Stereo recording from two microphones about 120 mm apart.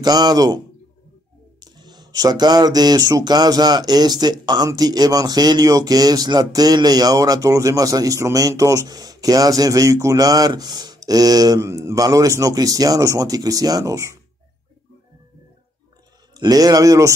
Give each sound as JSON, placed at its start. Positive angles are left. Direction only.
{"t": 0.0, "sound": "speech", "side_deg": -35}
{"t": 1.6, "sound": "speech", "side_deg": -35}
{"t": 16.3, "sound": "speech", "side_deg": -30}